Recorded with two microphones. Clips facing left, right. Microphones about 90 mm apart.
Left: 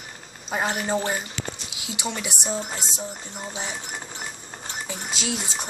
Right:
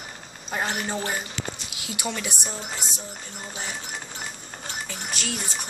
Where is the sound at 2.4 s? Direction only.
20° left (ahead or behind).